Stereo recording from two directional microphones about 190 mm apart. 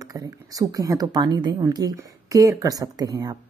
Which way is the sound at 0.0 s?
20° right (ahead or behind).